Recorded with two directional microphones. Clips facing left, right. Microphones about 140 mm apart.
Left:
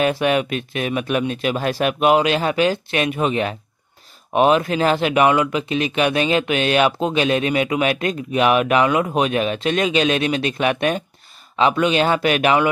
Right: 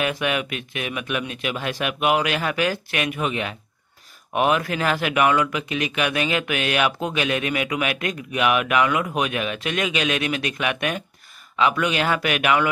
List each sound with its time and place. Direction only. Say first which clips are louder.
0.0 s speech: left 6 dB; 35° left (ahead or behind)